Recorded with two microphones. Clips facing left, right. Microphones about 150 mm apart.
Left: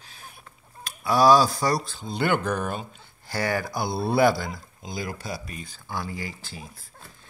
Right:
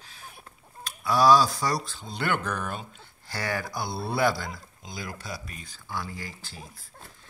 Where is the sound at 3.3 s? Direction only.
5° left (ahead or behind).